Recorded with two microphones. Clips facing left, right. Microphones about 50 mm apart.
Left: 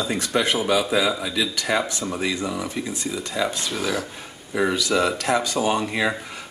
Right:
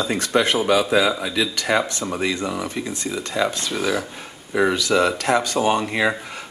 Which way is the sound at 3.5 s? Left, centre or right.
Centre.